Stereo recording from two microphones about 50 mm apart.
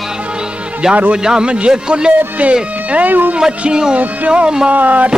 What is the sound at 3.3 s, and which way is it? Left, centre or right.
Speech, centre.